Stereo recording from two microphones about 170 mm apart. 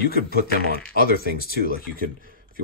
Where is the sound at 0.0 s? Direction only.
65° left (ahead or behind).